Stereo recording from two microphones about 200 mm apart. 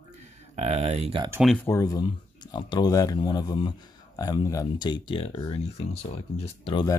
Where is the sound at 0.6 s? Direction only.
35° right (ahead or behind).